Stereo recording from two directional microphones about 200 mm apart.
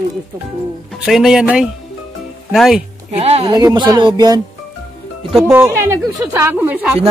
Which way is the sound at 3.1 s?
30° right (ahead or behind).